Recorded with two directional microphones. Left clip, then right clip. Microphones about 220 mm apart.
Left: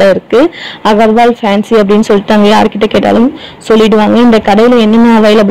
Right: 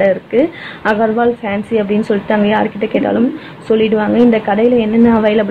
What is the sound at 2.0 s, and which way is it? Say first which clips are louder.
Speech: left 7 dB; 35° left (ahead or behind).